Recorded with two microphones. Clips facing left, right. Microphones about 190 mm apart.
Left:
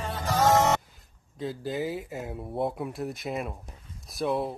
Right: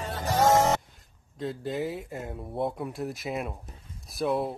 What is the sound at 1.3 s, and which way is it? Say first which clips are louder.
Speech: even; centre (ahead or behind).